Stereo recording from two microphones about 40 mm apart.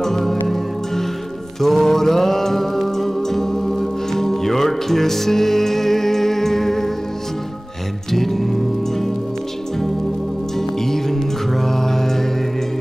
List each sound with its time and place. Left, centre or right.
0.0 s music: centre
8.1 s music: centre
10.6 s music: centre